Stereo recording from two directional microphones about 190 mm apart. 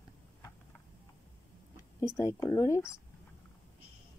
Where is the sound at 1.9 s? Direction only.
15° left (ahead or behind).